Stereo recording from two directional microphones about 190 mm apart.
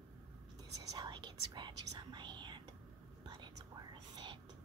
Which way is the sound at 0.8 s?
20° right (ahead or behind).